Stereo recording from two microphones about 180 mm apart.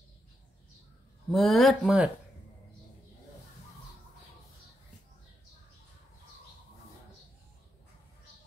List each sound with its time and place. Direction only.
1.3 s speech: centre (ahead or behind)